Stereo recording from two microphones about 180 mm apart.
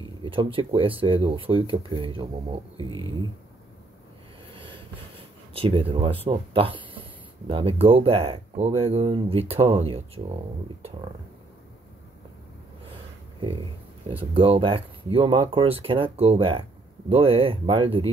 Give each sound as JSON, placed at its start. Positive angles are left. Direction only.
{"t": 0.2, "sound": "speech", "side_deg": -30}
{"t": 5.5, "sound": "speech", "side_deg": -30}
{"t": 14.0, "sound": "speech", "side_deg": -30}